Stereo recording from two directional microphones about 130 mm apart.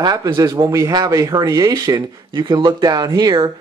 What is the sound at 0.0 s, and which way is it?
Speech, 30° right (ahead or behind).